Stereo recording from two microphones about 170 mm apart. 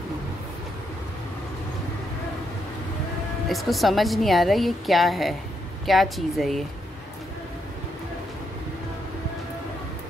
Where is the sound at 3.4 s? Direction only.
Centre (ahead or behind).